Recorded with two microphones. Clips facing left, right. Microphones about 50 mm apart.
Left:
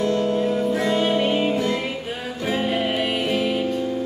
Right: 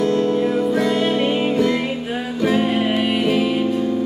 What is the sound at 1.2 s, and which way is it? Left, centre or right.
Music, centre.